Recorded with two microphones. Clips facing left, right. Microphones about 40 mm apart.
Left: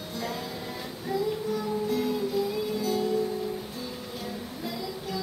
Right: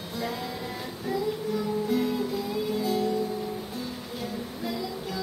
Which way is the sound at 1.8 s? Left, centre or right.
Centre.